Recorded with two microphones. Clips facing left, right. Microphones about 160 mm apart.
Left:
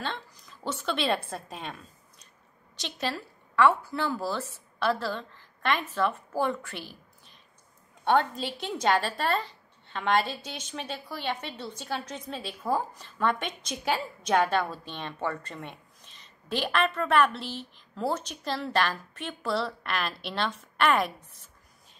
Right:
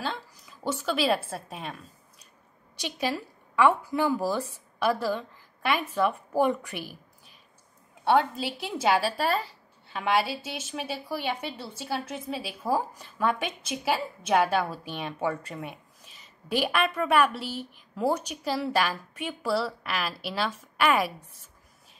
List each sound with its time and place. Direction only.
0.0 s a woman's voice: 5° right (ahead or behind)